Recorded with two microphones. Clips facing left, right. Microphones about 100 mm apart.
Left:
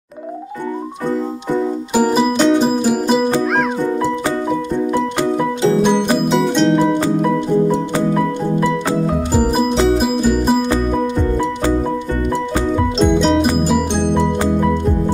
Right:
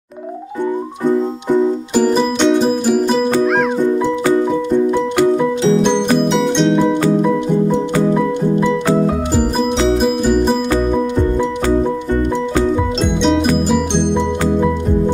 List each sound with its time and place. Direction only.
2.0 s music: 5° left (ahead or behind)
6.5 s music: 5° left (ahead or behind)
9.8 s music: 5° left (ahead or behind)
13.2 s music: 5° left (ahead or behind)